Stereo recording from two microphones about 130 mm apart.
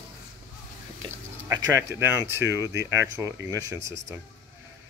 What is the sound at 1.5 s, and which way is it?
Speech, 25° right (ahead or behind).